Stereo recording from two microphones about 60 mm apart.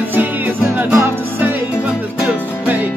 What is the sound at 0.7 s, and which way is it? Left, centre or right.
Music, right.